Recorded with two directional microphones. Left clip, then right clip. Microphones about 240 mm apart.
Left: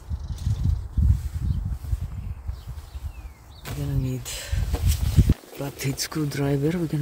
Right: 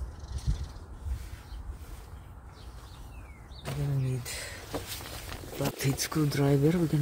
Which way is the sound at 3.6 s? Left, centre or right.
Left.